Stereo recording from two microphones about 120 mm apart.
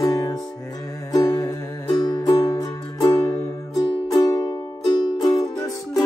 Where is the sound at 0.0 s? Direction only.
30° left (ahead or behind).